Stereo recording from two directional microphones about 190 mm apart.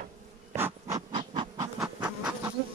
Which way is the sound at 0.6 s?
15° right (ahead or behind).